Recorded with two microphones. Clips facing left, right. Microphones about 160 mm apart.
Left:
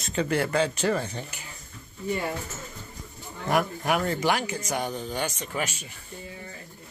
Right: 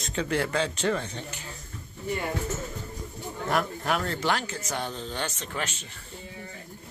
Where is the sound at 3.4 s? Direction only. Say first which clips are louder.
Left 2 dB; 10° left (ahead or behind).